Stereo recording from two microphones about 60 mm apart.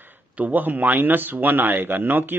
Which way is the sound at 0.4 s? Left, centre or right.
Right.